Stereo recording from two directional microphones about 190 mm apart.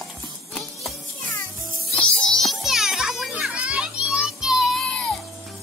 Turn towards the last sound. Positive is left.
turn(degrees=5)  # may be behind; listen again after turning